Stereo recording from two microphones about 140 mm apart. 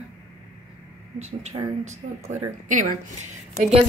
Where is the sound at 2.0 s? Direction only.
60° right (ahead or behind).